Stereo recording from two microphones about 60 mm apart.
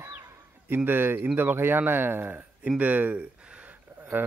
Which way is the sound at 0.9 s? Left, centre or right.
Right.